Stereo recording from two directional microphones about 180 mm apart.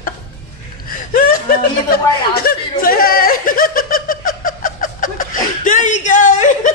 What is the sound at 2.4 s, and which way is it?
Snicker, 55° left (ahead or behind).